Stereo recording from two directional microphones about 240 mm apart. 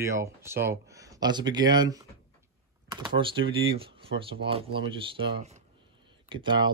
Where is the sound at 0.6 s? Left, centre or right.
Centre.